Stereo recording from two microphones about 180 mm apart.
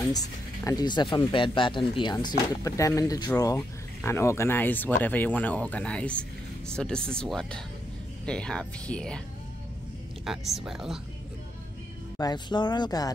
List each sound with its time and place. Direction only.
0.7 s speech: 25° left (ahead or behind); by 9.2 s 5° left (ahead or behind)
10.2 s speech: centre (ahead or behind)
12.2 s speech: 25° left (ahead or behind)